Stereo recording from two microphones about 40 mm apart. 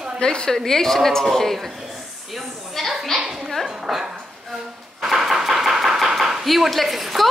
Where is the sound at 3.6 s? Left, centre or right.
Centre.